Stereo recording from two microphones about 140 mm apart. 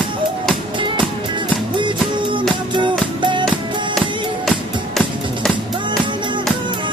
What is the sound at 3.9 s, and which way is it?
Music, centre (ahead or behind).